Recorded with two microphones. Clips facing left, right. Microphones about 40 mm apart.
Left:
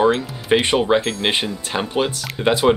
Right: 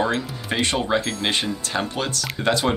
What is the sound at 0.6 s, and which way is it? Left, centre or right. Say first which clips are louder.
Speech: left 1 dB; left.